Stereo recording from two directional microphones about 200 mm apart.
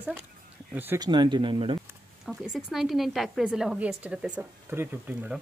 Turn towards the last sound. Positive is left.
turn(degrees=-10)  # may be behind; listen again after turning